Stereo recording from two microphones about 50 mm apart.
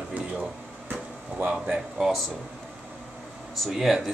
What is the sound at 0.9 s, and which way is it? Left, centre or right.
Air conditioning, right.